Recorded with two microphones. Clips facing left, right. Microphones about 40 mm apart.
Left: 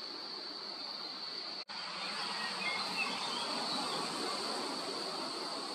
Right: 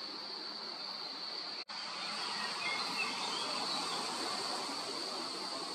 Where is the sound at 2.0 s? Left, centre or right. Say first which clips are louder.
Left 1 dB; centre.